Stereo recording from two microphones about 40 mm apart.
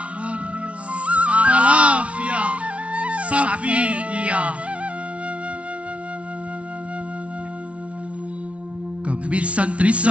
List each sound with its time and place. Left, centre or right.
0.9 s music: right
9.0 s speech: right